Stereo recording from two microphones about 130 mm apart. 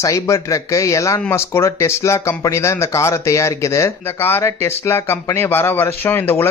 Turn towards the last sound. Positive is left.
turn(degrees=15)  # may be behind; listen again after turning